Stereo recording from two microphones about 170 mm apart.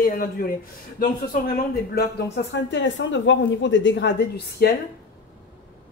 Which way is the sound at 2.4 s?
80° left.